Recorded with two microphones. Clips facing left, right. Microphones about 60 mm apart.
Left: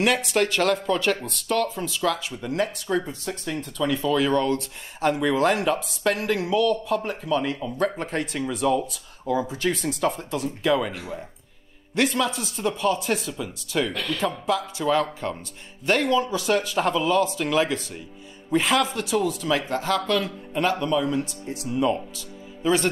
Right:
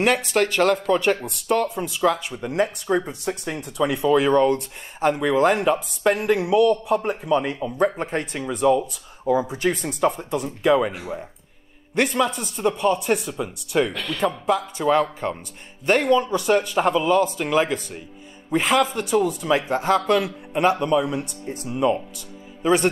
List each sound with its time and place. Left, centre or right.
0.0 s a man's voice: centre
5.1 s a man's voice: centre
8.1 s a man's voice: centre
15.8 s a man's voice: centre
21.6 s a man's voice: centre